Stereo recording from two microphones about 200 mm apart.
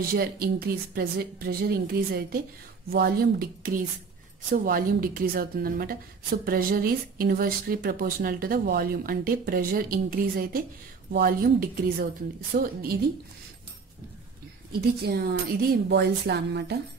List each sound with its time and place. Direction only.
0.0 s speech: 50° right (ahead or behind)
14.7 s a woman's voice: 50° right (ahead or behind)